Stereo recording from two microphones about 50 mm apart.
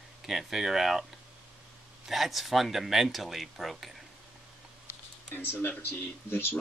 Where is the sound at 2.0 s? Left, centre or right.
Centre.